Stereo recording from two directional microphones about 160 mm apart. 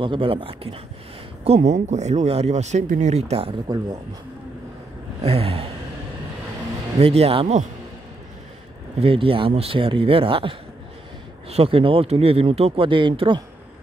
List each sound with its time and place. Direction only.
0.0 s speech: 35° right (ahead or behind)
5.2 s speech: 35° right (ahead or behind)
7.0 s speech: 35° right (ahead or behind)
9.0 s speech: 35° right (ahead or behind)